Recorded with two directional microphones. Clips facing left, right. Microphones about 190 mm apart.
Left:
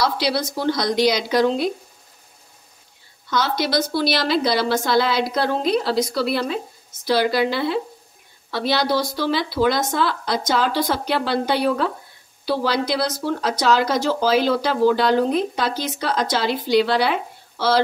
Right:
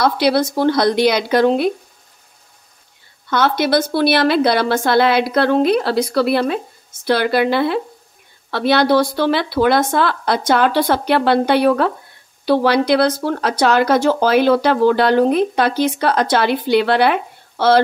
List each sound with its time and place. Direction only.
0.0 s speech: 55° right (ahead or behind)
3.3 s speech: 60° right (ahead or behind)